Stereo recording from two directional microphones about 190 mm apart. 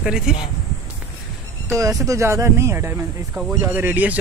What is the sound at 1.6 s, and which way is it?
Speech, 15° right (ahead or behind).